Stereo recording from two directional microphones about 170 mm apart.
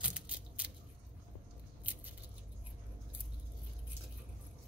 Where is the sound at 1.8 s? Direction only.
10° right (ahead or behind).